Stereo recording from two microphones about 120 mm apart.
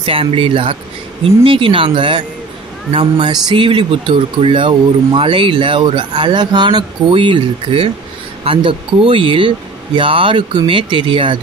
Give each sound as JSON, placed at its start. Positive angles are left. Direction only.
{"t": 0.0, "sound": "speech", "side_deg": -50}